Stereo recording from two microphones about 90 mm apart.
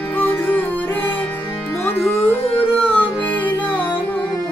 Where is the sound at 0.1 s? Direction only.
20° left (ahead or behind).